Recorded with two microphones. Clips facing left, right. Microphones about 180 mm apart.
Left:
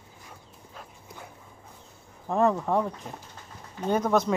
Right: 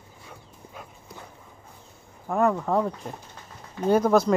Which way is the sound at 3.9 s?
5° right (ahead or behind).